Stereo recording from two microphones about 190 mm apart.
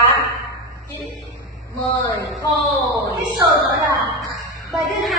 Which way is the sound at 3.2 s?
20° right (ahead or behind).